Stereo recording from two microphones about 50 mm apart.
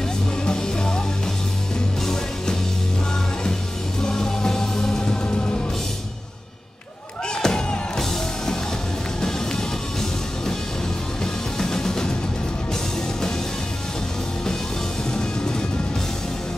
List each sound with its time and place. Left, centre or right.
0.5 s music: centre
4.0 s music: centre
7.4 s music: centre
11.5 s music: centre